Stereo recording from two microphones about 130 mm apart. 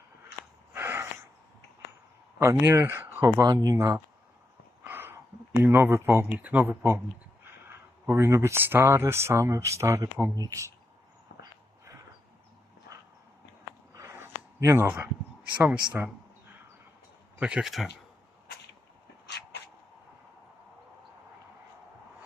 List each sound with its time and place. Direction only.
0.7 s gasp: 15° right (ahead or behind)
2.3 s speech: 20° right (ahead or behind)
4.8 s a sound: 15° right (ahead or behind)
5.6 s speech: 20° right (ahead or behind)
8.1 s speech: 20° right (ahead or behind)
13.9 s a sound: 20° right (ahead or behind)
15.5 s speech: 10° right (ahead or behind)
17.4 s speech: 5° right (ahead or behind)